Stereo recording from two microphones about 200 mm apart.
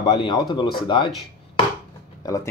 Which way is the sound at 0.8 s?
25° left (ahead or behind).